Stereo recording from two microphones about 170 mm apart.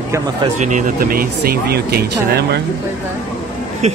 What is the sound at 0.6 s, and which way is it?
Speech, 50° right (ahead or behind).